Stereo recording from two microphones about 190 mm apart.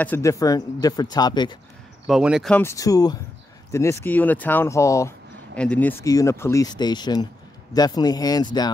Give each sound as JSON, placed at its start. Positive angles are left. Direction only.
{"t": 0.0, "sound": "speech", "side_deg": 15}
{"t": 2.0, "sound": "speech", "side_deg": -5}
{"t": 2.6, "sound": "speech", "side_deg": 15}